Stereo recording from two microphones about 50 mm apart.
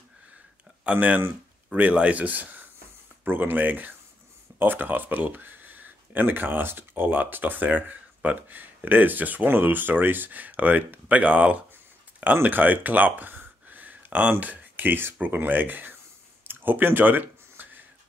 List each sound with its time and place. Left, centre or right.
0.9 s speech: right
12.4 s a sound: right
14.4 s speech: right
16.4 s clicking: right